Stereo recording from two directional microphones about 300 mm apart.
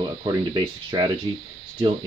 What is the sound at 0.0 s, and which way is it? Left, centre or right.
Speech, centre.